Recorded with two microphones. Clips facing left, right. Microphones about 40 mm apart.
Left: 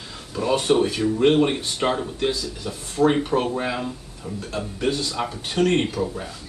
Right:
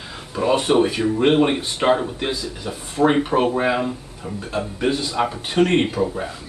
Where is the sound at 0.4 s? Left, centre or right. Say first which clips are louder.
Right 3 dB; centre.